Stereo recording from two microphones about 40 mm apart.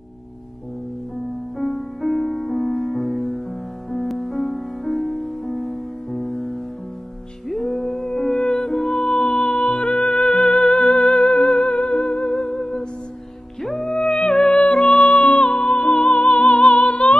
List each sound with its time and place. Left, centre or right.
1.6 s music: centre
7.4 s music: centre; by 12.3 s left
12.4 s music: centre; by 17.2 s left